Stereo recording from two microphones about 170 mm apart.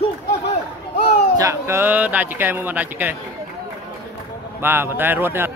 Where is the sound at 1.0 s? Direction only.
40° left (ahead or behind).